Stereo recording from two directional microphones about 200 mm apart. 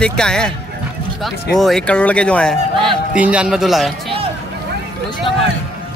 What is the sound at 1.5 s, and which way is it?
Speech, centre (ahead or behind).